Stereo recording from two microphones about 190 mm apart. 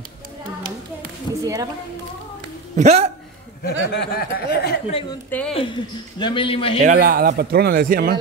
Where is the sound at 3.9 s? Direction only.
55° left (ahead or behind).